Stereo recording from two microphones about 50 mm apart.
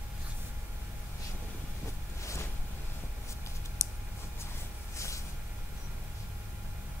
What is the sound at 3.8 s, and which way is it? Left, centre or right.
Clicking, left.